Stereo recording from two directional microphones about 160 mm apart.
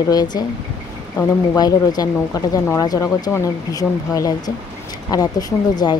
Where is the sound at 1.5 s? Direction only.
25° left (ahead or behind).